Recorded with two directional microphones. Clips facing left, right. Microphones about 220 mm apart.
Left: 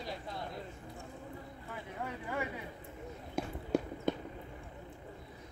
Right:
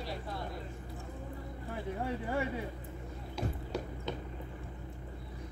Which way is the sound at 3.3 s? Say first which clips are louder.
Left 4 dB; 50° left (ahead or behind).